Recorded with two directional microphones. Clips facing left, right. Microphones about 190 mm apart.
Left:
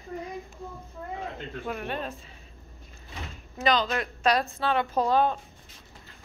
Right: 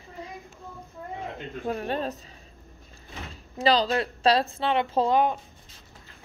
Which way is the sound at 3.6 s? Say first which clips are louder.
Right 3 dB; 35° right (ahead or behind).